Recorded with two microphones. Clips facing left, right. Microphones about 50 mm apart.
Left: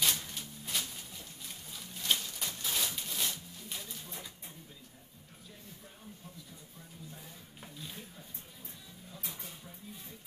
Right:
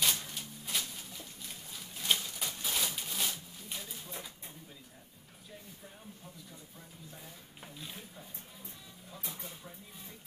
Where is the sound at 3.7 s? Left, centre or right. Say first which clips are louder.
Right 2 dB; centre.